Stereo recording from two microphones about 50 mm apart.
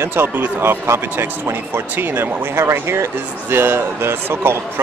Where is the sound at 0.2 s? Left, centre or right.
Right.